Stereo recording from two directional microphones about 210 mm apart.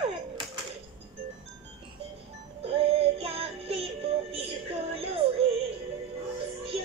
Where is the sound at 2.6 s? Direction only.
30° right (ahead or behind).